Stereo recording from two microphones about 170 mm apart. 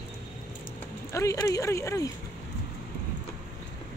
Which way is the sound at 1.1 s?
20° left (ahead or behind).